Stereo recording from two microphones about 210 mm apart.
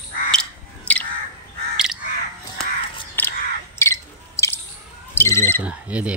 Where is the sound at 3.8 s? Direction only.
15° left (ahead or behind).